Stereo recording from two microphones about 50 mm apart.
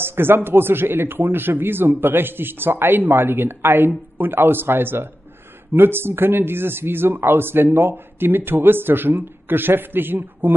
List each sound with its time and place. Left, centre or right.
0.0 s speech: right